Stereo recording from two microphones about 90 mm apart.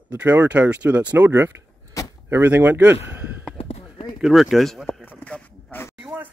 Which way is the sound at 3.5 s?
90° left.